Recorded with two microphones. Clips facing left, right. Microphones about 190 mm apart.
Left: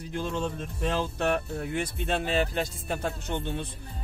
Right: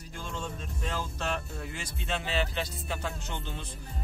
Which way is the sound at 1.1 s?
55° left (ahead or behind).